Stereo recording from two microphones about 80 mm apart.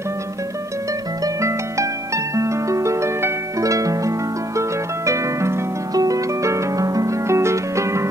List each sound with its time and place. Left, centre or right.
1.2 s harp: right